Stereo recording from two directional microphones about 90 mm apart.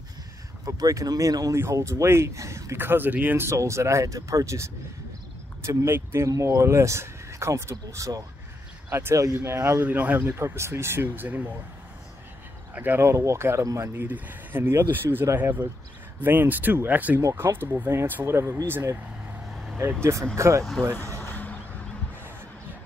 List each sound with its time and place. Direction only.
0.7 s speech: 40° right (ahead or behind)
8.9 s speech: 25° right (ahead or behind)
9.6 s speech: 20° right (ahead or behind)
12.7 s speech: 20° right (ahead or behind)
14.0 s speech: 20° right (ahead or behind)
17.2 s speech: 30° right (ahead or behind)
19.5 s vehicle: centre (ahead or behind)
20.0 s speech: 30° right (ahead or behind)
21.2 s a sound: 20° left (ahead or behind)